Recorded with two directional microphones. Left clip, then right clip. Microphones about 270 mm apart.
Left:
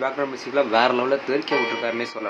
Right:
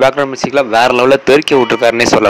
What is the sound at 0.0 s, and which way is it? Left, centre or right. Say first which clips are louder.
Speech: right 14 dB; right.